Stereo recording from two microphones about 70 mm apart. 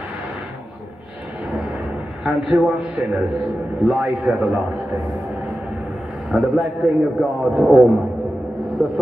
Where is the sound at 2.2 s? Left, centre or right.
Centre.